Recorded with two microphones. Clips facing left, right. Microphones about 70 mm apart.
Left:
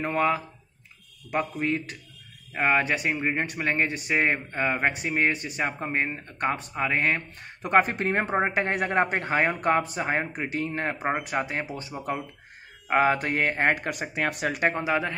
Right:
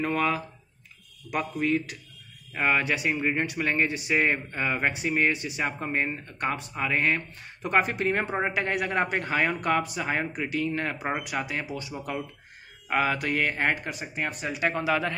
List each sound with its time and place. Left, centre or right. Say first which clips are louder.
0.0 s speech: left 2 dB; left
13.8 s speech: left 4 dB; left
14.7 s speech: even; left